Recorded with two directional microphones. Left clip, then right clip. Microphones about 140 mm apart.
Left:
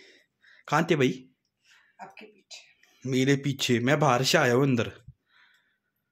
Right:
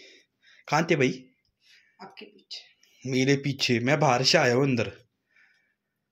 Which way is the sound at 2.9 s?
30° left (ahead or behind).